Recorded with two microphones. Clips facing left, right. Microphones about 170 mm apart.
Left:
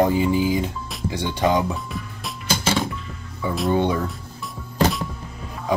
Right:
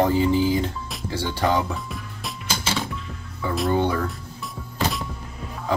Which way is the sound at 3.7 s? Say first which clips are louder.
Left 2 dB; 15° left (ahead or behind).